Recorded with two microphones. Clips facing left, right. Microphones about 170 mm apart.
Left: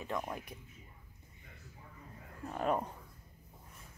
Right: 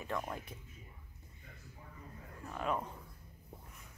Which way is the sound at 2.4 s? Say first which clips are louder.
Left 4 dB; 40° left (ahead or behind).